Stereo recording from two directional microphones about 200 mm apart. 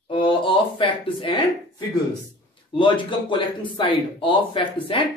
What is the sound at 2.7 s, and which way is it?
Speech, 25° left (ahead or behind).